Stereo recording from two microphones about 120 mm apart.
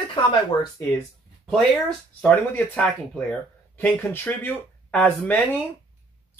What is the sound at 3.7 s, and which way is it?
Speech, 20° left (ahead or behind).